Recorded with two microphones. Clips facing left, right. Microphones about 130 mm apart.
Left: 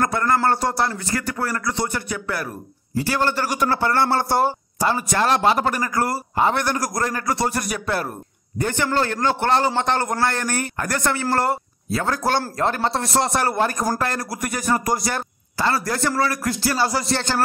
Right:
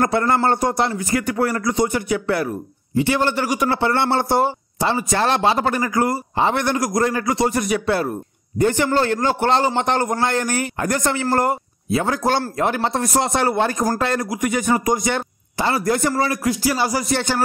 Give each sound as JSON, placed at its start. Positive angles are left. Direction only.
{"t": 0.0, "sound": "a man's voice", "side_deg": -25}